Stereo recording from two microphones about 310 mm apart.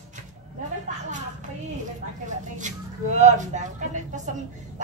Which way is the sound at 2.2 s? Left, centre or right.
Right.